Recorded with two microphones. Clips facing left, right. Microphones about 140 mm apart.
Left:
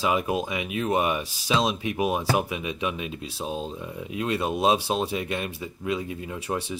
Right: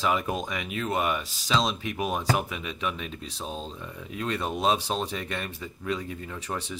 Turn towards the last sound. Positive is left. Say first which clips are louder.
# left 4 dB
turn(degrees=10)  # may be behind; listen again after turning